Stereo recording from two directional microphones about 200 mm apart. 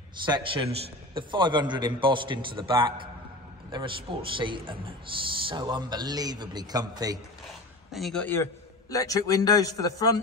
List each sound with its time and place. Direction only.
0.2 s a man's voice: 25° right (ahead or behind)
7.9 s a man's voice: centre (ahead or behind); by 10.2 s 20° left (ahead or behind)